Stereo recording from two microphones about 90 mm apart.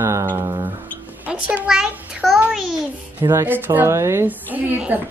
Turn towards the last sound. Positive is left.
turn(degrees=-20)  # may be behind; listen again after turning